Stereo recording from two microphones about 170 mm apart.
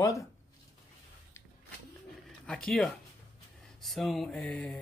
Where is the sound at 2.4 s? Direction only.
5° left (ahead or behind).